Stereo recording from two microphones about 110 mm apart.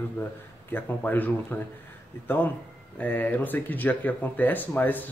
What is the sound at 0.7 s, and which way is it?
Speech, 15° left (ahead or behind).